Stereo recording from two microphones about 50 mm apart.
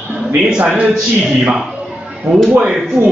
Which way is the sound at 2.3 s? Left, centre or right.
Right.